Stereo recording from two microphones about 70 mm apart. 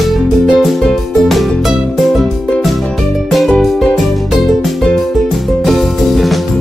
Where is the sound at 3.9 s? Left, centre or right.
Centre.